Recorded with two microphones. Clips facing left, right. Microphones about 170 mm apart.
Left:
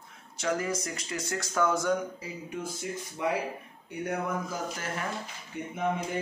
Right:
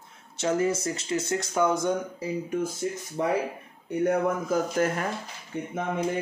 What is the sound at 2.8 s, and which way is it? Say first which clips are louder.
Speech: right 6 dB; 40° right (ahead or behind).